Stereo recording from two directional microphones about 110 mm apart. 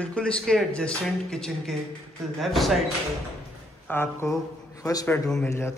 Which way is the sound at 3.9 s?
20° left (ahead or behind).